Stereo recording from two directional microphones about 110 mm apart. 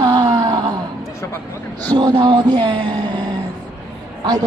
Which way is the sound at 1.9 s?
40° right (ahead or behind).